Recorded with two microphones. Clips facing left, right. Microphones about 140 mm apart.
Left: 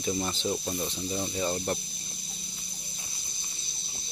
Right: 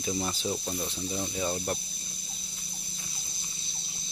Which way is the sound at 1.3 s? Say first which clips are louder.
Left 1 dB; 5° right (ahead or behind).